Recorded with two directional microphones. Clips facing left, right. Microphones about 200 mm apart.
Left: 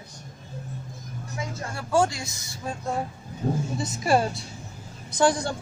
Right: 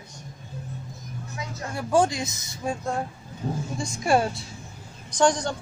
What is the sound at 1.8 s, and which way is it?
Speech, 20° right (ahead or behind).